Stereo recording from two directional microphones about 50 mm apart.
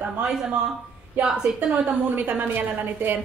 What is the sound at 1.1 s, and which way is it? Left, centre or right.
A woman's voice, right.